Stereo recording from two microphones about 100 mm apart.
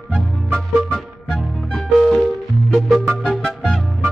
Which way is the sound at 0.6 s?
5° left (ahead or behind).